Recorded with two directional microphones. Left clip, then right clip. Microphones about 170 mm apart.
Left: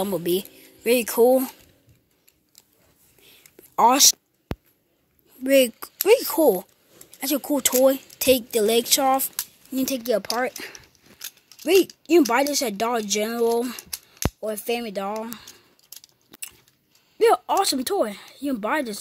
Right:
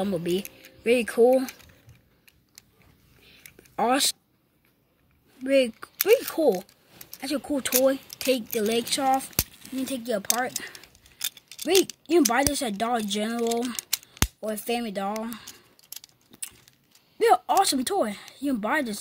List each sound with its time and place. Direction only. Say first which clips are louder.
0.0 s speech: left 3 dB; 40° left (ahead or behind)
3.7 s speech: left 7 dB; 35° left (ahead or behind)
5.4 s speech: left 4 dB; 40° left (ahead or behind)
9.8 s speech: left 6 dB; 55° left (ahead or behind)
11.6 s speech: left 4 dB; 50° left (ahead or behind)
17.2 s speech: left 1 dB; 50° left (ahead or behind)